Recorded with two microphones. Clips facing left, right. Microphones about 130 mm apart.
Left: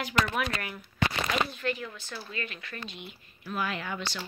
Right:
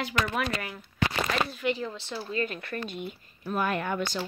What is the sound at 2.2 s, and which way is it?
Speech, 40° right (ahead or behind).